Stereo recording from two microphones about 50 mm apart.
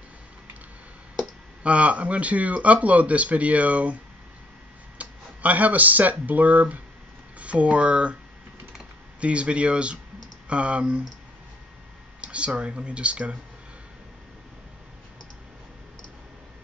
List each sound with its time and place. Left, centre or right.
1.2 s speech: right
9.2 s speech: right
12.2 s speech: right